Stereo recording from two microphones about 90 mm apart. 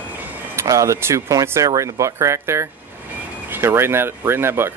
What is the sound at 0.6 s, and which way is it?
Speech, 35° right (ahead or behind).